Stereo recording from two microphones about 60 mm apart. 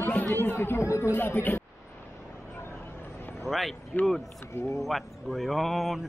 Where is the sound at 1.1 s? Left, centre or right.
Left.